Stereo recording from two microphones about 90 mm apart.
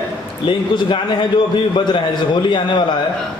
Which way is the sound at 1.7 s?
60° left (ahead or behind).